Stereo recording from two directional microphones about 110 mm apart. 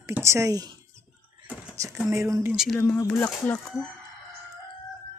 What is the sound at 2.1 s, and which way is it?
Speech, 25° right (ahead or behind).